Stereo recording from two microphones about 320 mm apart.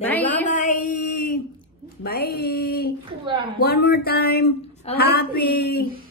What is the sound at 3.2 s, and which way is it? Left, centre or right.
Speech, centre.